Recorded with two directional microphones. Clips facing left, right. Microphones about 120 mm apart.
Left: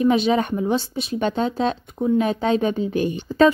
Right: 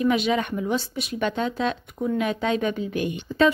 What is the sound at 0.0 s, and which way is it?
Speech, 30° left (ahead or behind).